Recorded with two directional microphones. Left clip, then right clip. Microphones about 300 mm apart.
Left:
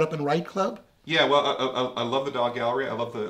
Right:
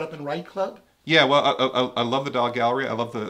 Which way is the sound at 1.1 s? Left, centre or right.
Right.